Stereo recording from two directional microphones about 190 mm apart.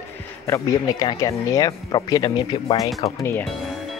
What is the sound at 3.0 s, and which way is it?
Speech, 15° left (ahead or behind).